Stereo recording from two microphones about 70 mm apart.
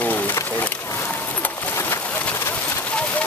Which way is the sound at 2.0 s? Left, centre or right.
Centre.